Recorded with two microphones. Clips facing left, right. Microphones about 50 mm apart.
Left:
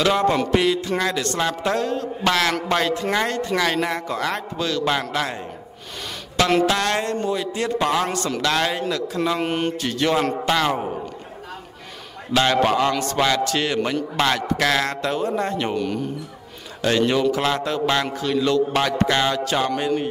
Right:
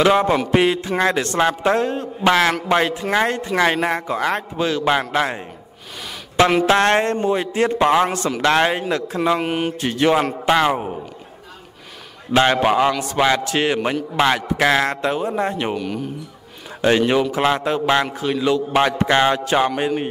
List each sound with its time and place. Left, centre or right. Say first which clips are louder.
0.0 s a man's voice: right 3 dB; right
6.6 s a sound: right 5 dB; right
7.2 s speech: right 5 dB; right
9.4 s a man's voice: right 1 dB; centre
9.8 s speech: right 6 dB; right
12.3 s a man's voice: right 3 dB; right; by 16.1 s centre
16.8 s a man's voice: right 2 dB; right